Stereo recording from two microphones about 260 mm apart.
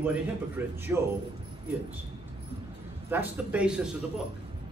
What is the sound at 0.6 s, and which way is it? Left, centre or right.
Speech, centre.